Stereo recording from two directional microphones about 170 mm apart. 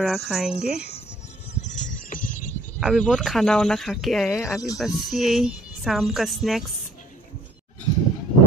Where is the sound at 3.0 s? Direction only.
5° left (ahead or behind).